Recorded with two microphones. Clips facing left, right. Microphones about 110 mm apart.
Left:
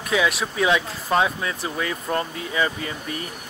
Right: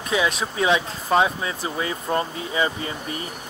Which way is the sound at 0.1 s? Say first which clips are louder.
Left 1 dB; 25° right (ahead or behind).